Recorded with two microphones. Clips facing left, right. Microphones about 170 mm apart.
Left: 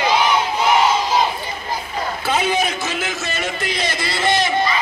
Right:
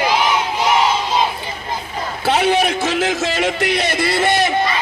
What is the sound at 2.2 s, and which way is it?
A man's voice, 70° right (ahead or behind).